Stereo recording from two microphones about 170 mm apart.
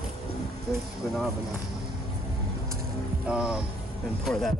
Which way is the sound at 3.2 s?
5° right (ahead or behind).